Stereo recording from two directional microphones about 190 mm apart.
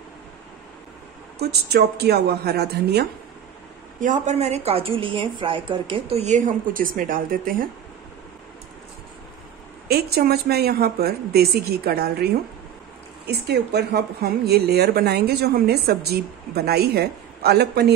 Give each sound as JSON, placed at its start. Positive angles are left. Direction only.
{"t": 1.4, "sound": "speech", "side_deg": -60}
{"t": 4.0, "sound": "a woman's voice", "side_deg": -40}
{"t": 9.8, "sound": "speech", "side_deg": -55}